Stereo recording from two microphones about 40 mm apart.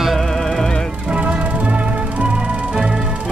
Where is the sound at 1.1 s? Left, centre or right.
Right.